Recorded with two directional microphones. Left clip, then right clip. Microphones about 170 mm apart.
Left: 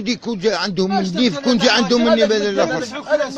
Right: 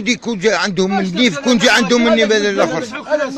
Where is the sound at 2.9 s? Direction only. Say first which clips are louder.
Right 1 dB; 30° left (ahead or behind).